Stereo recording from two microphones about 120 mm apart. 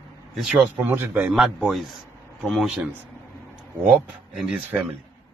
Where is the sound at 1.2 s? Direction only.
5° right (ahead or behind).